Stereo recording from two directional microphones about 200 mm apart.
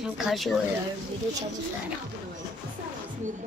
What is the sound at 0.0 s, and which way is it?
Speech, centre (ahead or behind).